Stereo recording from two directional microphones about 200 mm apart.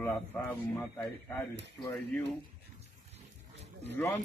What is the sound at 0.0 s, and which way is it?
Speech, 10° left (ahead or behind).